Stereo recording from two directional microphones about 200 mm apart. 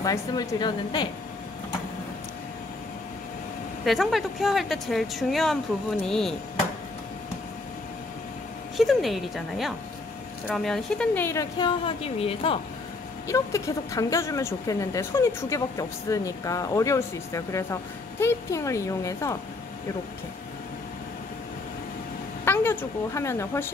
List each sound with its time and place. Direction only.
0.0 s a woman's voice: 15° left (ahead or behind)
3.8 s speech: centre (ahead or behind)
8.7 s speech: centre (ahead or behind)
11.5 s a woman's voice: 25° left (ahead or behind)
13.3 s speech: 15° left (ahead or behind)
22.4 s a woman's voice: 10° left (ahead or behind)